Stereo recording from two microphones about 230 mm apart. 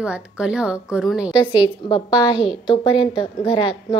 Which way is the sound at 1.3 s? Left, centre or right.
Centre.